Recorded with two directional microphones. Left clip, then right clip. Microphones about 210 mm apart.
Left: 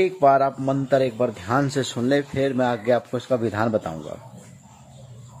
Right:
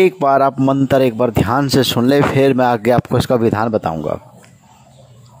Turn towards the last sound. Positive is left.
turn(degrees=-45)  # may be behind; listen again after turning